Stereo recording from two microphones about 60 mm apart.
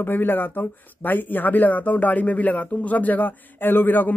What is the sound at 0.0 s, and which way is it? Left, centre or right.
Speech, left.